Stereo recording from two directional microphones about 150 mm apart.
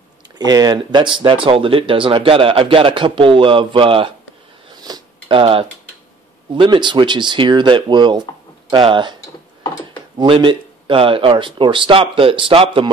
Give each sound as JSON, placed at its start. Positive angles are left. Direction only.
{"t": 0.4, "sound": "speech", "side_deg": -25}
{"t": 4.8, "sound": "a sound", "side_deg": -30}
{"t": 6.5, "sound": "speech", "side_deg": -30}
{"t": 10.1, "sound": "speech", "side_deg": -35}